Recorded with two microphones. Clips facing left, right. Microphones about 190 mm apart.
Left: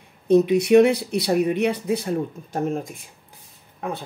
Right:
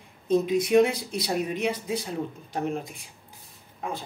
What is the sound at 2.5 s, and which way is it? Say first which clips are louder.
Speech: left 4 dB; 45° left (ahead or behind).